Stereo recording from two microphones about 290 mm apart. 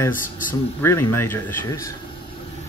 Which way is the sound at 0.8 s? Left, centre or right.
Centre.